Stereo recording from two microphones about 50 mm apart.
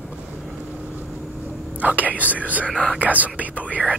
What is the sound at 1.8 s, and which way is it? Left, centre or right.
Speech, right.